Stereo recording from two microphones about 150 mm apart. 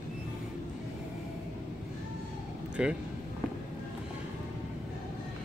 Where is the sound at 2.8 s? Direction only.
5° right (ahead or behind).